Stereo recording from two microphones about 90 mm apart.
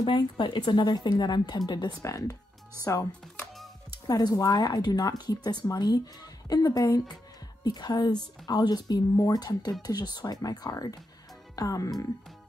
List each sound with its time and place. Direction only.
0.0 s speech: 55° left (ahead or behind)
2.0 s speech: 40° left (ahead or behind)
3.9 s speech: 50° left (ahead or behind)